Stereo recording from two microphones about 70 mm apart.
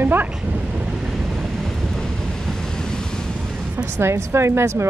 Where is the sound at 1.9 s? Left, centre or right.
Centre.